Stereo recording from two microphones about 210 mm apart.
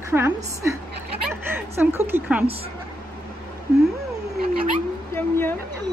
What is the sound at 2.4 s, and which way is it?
Speech, 30° right (ahead or behind).